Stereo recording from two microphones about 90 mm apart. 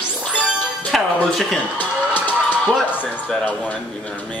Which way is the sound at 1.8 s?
20° left (ahead or behind).